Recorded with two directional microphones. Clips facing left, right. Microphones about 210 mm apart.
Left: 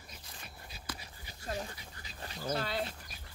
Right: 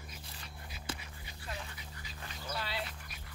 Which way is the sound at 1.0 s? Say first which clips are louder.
Left 2 dB; 40° left (ahead or behind).